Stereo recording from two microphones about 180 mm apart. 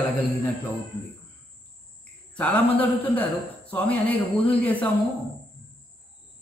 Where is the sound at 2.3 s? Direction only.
10° left (ahead or behind).